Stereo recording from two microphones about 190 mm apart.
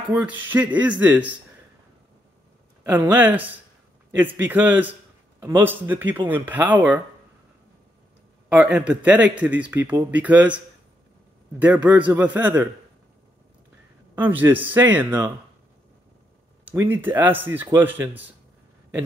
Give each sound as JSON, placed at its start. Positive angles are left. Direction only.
{"t": 0.1, "sound": "a man's voice", "side_deg": -10}
{"t": 2.8, "sound": "a man's voice", "side_deg": -10}
{"t": 8.5, "sound": "a man's voice", "side_deg": -5}
{"t": 11.6, "sound": "a man's voice", "side_deg": -10}
{"t": 14.1, "sound": "a man's voice", "side_deg": -10}
{"t": 16.6, "sound": "a man's voice", "side_deg": -10}